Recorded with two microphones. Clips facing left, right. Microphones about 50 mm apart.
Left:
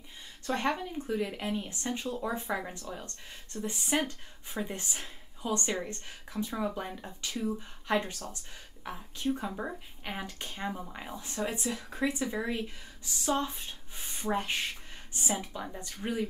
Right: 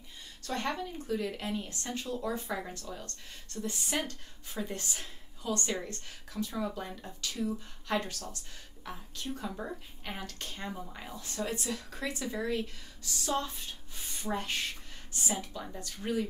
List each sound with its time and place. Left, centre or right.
0.4 s a woman's voice: left